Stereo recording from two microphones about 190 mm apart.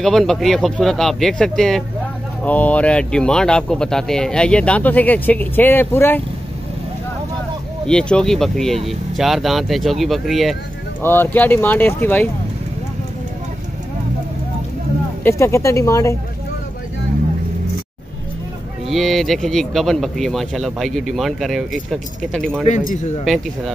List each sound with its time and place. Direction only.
0.0 s speech: centre (ahead or behind)
7.8 s speech: 5° left (ahead or behind)
11.0 s speech: 10° left (ahead or behind)
15.2 s speech: 15° left (ahead or behind)
18.9 s speech: centre (ahead or behind)
22.7 s speech: 35° left (ahead or behind)